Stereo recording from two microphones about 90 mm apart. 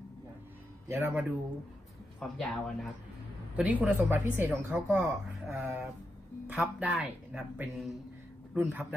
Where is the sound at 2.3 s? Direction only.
10° left (ahead or behind).